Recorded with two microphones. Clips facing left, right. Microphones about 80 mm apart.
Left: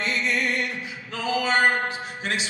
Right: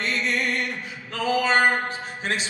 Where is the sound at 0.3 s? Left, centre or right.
Right.